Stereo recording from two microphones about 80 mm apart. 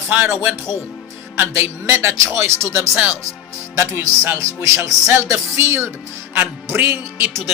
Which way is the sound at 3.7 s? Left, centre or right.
Right.